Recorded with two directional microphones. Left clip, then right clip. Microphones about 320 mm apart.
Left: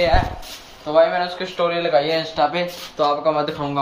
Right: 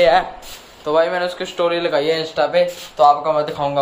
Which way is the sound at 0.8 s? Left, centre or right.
Centre.